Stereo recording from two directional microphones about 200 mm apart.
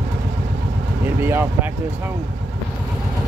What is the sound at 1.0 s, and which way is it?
Speech, 10° right (ahead or behind).